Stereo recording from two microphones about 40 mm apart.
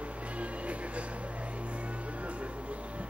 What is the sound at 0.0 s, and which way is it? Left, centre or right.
Music, right.